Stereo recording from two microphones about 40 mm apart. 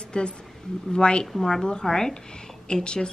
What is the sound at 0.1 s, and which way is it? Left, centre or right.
A woman's voice, left.